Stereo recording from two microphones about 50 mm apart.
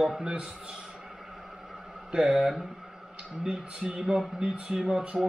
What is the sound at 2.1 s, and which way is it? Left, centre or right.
Speech, centre.